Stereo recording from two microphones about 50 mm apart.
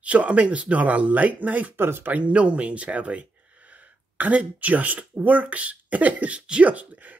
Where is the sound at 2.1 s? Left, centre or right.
Right.